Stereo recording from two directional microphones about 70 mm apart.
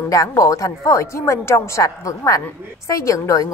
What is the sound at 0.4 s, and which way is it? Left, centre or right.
A woman's voice, left.